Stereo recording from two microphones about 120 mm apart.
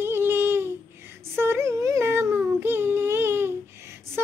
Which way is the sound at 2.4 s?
15° right (ahead or behind).